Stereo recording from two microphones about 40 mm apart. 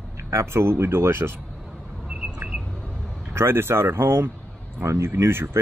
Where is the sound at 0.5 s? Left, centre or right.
Right.